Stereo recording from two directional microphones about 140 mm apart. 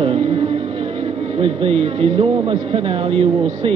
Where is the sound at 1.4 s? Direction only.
45° right (ahead or behind).